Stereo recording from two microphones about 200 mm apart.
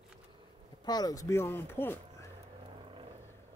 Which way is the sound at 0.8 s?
20° left (ahead or behind).